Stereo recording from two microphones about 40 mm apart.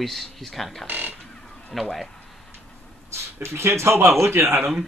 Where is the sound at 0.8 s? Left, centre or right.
Right.